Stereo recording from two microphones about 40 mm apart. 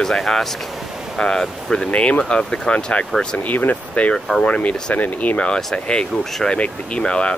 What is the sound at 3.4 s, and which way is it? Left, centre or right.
Speech, left.